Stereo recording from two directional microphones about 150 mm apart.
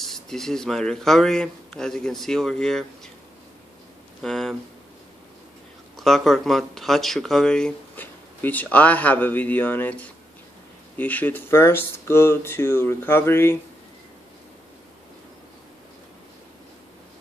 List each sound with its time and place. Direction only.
0.0 s speech: centre (ahead or behind)
4.2 s a sound: 5° left (ahead or behind)
5.9 s speech: 5° left (ahead or behind)